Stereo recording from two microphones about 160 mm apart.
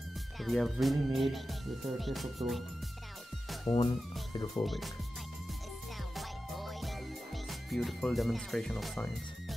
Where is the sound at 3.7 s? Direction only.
30° left (ahead or behind).